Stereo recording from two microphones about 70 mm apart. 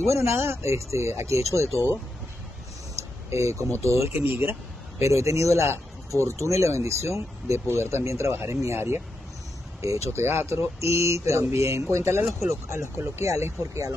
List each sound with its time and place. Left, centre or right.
0.1 s speech: right
3.3 s speech: right